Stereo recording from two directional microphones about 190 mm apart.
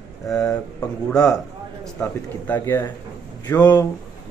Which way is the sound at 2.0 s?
10° left (ahead or behind).